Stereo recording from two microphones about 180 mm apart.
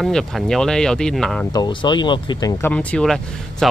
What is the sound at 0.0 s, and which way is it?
Speech, centre (ahead or behind).